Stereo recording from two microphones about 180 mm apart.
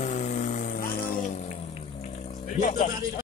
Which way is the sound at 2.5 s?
45° left (ahead or behind).